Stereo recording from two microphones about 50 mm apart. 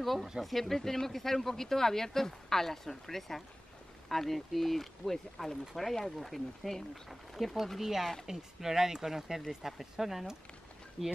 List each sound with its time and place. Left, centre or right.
0.0 s speech: centre